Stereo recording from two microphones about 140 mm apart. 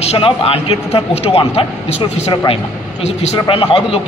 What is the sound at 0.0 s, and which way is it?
Speech, 45° left (ahead or behind).